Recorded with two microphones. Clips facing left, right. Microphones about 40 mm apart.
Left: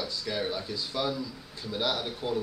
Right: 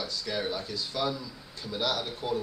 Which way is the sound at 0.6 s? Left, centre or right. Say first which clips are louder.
Even; centre.